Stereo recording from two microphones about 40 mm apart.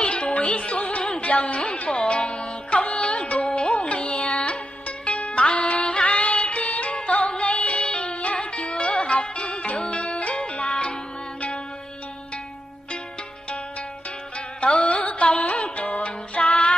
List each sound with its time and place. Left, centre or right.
0.0 s music: left
14.6 s music: left